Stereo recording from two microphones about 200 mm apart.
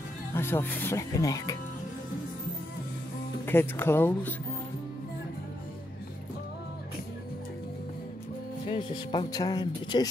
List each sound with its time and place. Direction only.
0.3 s speech: 10° left (ahead or behind)
3.4 s speech: 10° left (ahead or behind)
8.6 s speech: 25° left (ahead or behind)